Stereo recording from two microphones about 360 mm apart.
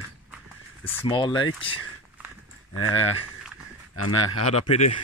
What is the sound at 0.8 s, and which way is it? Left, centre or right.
Speech, centre.